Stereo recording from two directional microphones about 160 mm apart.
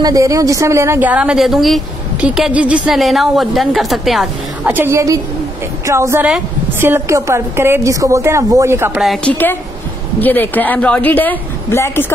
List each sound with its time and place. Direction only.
0.0 s a woman's voice: 20° right (ahead or behind); by 4.3 s centre (ahead or behind)
4.6 s a woman's voice: 15° right (ahead or behind)
9.0 s a woman's voice: centre (ahead or behind)
10.2 s a woman's voice: 10° left (ahead or behind)